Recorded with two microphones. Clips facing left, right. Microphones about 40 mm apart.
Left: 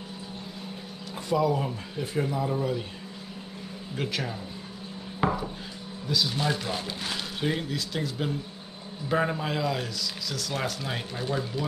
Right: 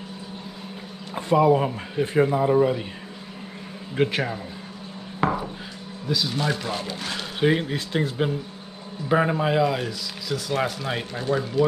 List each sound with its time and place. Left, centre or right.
1.1 s speech: right
3.9 s speech: right
6.0 s speech: centre
7.3 s speech: right
9.1 s speech: centre